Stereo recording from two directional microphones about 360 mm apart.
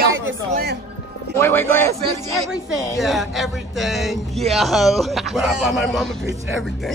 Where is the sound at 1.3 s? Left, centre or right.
Centre.